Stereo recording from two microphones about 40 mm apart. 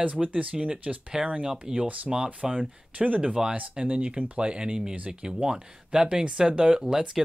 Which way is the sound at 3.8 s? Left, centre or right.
Right.